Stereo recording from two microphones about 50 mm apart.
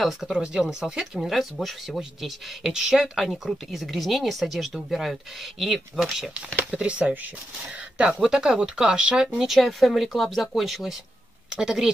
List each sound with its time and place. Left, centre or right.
0.0 s a woman's voice: centre
0.4 s speech: centre
1.2 s a woman's voice: centre
2.7 s a woman's voice: centre
6.7 s speech: right
9.6 s a woman's voice: centre